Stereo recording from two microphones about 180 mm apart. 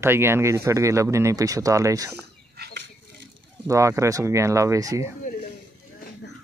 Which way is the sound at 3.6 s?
15° right (ahead or behind).